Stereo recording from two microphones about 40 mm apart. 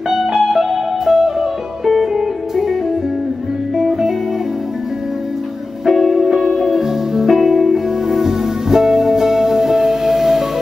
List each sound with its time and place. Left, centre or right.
0.1 s music: centre
5.9 s music: centre